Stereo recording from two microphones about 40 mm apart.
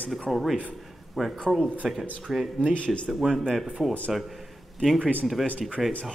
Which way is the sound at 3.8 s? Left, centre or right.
Centre.